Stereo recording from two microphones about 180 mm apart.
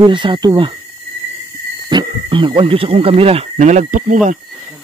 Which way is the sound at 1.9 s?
25° right (ahead or behind).